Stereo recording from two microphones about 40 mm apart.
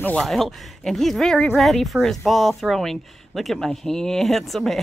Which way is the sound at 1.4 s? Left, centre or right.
Centre.